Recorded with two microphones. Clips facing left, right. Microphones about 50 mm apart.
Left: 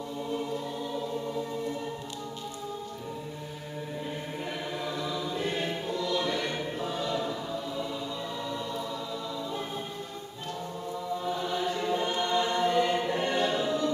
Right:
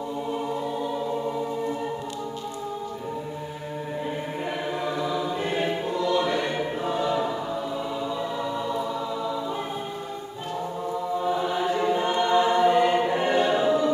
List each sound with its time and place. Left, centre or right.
0.3 s music: centre
4.8 s choir: centre
8.5 s music: centre
11.1 s choir: centre